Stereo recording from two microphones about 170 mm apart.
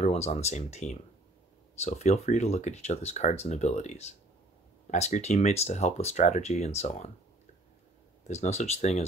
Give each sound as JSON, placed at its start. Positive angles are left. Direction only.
{"t": 0.0, "sound": "speech", "side_deg": 40}
{"t": 8.2, "sound": "speech", "side_deg": 40}